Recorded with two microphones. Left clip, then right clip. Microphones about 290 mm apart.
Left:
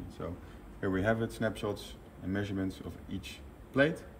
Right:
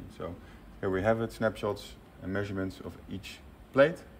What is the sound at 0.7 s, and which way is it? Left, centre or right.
A man's voice, right.